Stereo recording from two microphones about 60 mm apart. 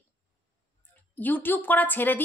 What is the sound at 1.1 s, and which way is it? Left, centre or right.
A woman's voice, left.